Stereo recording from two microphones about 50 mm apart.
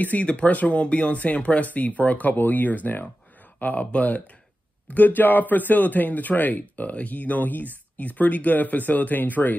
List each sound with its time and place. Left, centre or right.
0.0 s a man's voice: left